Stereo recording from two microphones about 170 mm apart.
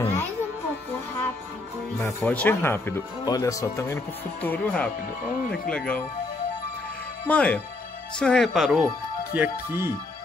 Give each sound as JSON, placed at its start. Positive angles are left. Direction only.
{"t": 0.0, "sound": "music", "side_deg": 15}
{"t": 2.2, "sound": "speech", "side_deg": 10}
{"t": 7.2, "sound": "speech", "side_deg": 10}
{"t": 9.3, "sound": "speech", "side_deg": -10}